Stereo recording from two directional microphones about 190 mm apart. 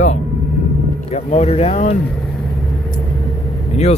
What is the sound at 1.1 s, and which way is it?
Speech, 35° left (ahead or behind).